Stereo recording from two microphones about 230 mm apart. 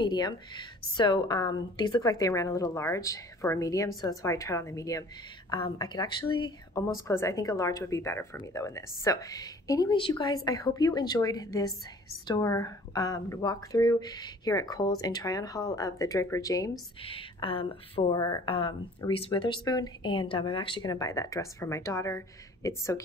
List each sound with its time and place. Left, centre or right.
0.0 s a woman's voice: centre